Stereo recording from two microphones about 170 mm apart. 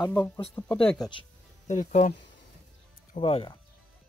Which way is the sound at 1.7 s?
45° left (ahead or behind).